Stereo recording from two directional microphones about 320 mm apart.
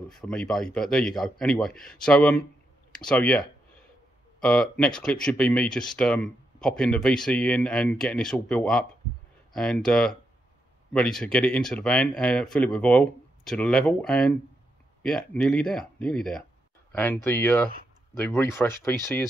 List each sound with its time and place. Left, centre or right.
0.1 s speech: centre